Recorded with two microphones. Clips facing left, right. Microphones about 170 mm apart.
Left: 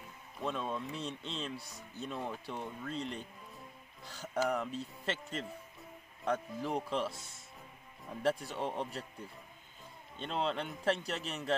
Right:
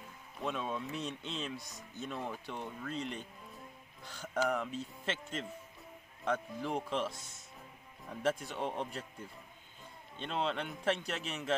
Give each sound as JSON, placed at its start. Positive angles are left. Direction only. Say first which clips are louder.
{"t": 0.4, "sound": "speech", "louder": "even", "side_deg": 0}
{"t": 1.6, "sound": "speech", "louder": "even", "side_deg": 30}
{"t": 2.0, "sound": "speech", "louder": "left 1 dB", "side_deg": 0}
{"t": 4.5, "sound": "speech", "louder": "even", "side_deg": 0}
{"t": 8.1, "sound": "speech", "louder": "left 1 dB", "side_deg": 0}
{"t": 10.1, "sound": "speech", "louder": "even", "side_deg": 0}